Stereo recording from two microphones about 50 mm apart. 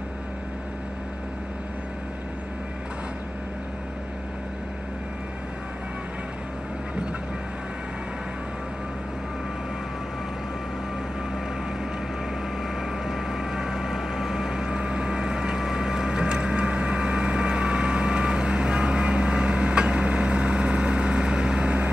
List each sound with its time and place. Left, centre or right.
12.6 s vehicle: centre